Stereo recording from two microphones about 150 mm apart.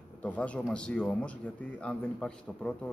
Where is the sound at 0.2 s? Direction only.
10° left (ahead or behind).